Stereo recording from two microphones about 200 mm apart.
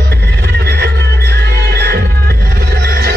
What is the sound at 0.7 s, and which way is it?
Music, 55° right (ahead or behind).